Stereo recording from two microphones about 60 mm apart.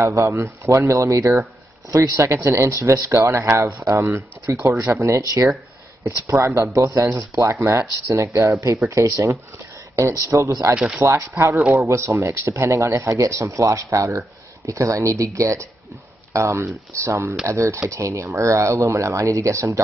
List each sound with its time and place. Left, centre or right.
0.0 s a man's voice: right
11.0 s speech: right